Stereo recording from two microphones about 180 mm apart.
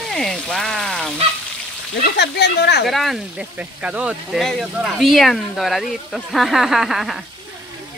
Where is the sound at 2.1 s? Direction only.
70° left (ahead or behind).